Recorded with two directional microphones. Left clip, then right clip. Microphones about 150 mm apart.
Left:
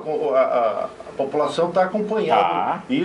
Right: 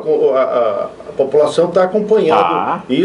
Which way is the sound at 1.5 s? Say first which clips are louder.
Right 7 dB; 20° right (ahead or behind).